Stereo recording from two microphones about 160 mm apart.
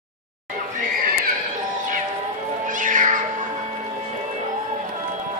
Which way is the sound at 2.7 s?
55° right (ahead or behind).